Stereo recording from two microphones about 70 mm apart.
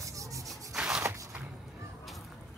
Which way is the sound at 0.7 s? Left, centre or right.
Centre.